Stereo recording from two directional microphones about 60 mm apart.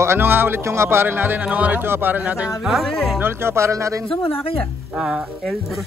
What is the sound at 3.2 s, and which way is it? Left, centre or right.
Speech, right.